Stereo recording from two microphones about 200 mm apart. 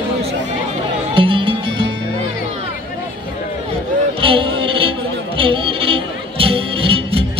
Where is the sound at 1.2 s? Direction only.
25° right (ahead or behind).